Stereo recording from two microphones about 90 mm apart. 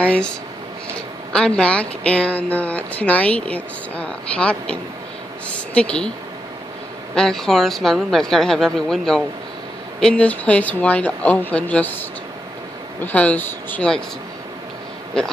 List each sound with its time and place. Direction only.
0.0 s speech: 10° left (ahead or behind)
7.2 s a woman's voice: 5° left (ahead or behind)
13.0 s speech: 15° left (ahead or behind)